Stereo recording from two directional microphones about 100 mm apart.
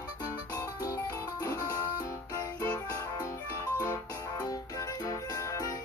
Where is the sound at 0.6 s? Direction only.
30° left (ahead or behind).